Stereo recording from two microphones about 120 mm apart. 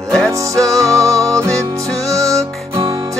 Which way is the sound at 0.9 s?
5° left (ahead or behind).